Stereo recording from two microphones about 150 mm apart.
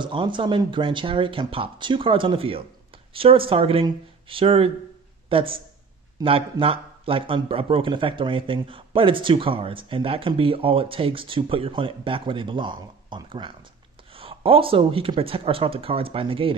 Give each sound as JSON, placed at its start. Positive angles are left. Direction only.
{"t": 0.0, "sound": "a man's voice", "side_deg": -35}